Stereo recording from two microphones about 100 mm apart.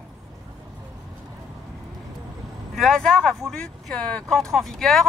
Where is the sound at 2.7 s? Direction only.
Centre (ahead or behind).